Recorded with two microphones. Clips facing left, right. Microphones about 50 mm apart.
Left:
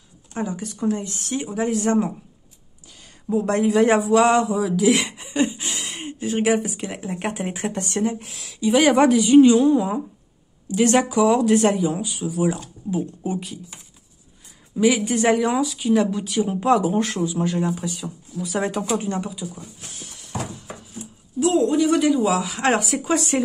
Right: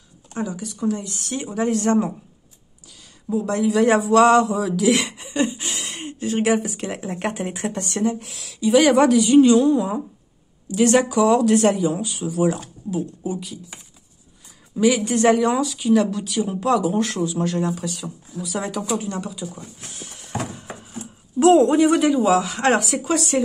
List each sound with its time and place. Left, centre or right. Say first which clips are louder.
0.3 s speech: even; left
1.3 s speech: right 1 dB; centre
3.3 s speech: left 1 dB; left
3.8 s speech: right 3 dB; centre
13.2 s speech: left 1 dB; left
14.8 s speech: right 1 dB; centre
16.5 s speech: left 1 dB; left
17.1 s speech: even; centre
18.4 s speech: left 2 dB; left
19.5 s speech: right 1 dB; centre
20.9 s a sound: right 4 dB; right
21.6 s speech: right 3 dB; right
21.9 s speech: right 2 dB; centre